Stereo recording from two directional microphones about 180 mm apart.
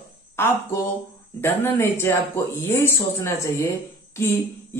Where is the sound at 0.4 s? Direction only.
10° left (ahead or behind).